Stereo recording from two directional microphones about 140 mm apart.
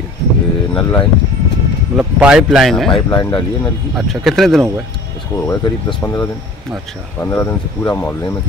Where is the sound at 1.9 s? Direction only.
5° right (ahead or behind).